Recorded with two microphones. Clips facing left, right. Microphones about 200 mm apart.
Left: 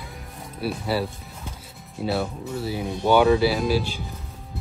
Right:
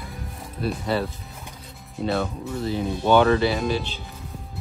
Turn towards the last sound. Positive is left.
turn(degrees=5)  # may be behind; listen again after turning